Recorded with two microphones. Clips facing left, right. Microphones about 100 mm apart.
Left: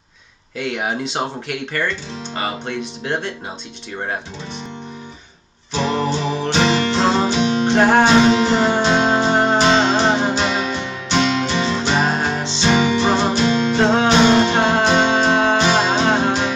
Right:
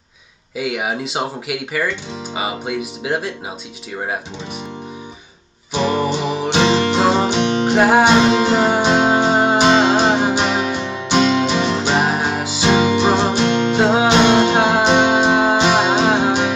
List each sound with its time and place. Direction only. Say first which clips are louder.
0.6 s speech: right 1 dB; 5° right (ahead or behind)
5.7 s music: right 2 dB; 10° right (ahead or behind)
7.7 s music: right 1 dB; 5° right (ahead or behind)
8.0 s music: even; 15° right (ahead or behind)